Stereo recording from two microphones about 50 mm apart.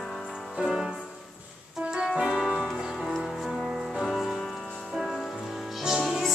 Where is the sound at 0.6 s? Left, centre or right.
Centre.